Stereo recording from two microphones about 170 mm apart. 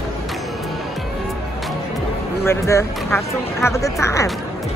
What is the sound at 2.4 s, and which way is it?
Speech, 15° left (ahead or behind).